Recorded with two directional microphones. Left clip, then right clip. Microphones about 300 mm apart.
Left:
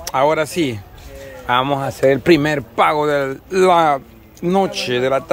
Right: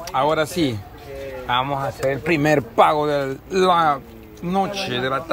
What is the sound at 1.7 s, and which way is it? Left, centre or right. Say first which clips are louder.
Speech: left 7 dB; left.